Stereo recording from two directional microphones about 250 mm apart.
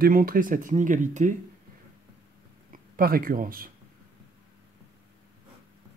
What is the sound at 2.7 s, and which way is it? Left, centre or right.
Speech, right.